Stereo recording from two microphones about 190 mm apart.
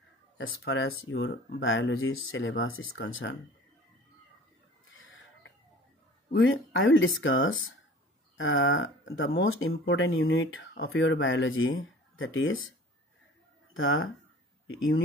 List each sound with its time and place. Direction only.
0.7 s speech: 85° left
4.9 s chicken: 90° left
6.3 s speech: 90° left
13.7 s speech: 90° left